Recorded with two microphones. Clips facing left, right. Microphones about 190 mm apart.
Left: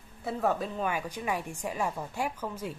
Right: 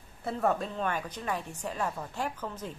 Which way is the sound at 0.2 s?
Centre (ahead or behind).